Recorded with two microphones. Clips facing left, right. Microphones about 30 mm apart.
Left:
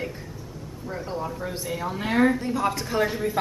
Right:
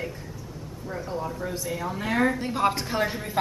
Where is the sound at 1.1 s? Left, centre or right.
Centre.